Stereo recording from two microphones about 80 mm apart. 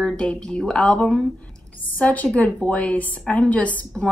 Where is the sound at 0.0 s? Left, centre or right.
Centre.